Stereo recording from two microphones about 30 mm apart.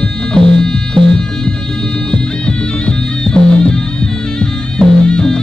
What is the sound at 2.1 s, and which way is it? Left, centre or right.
Music, left.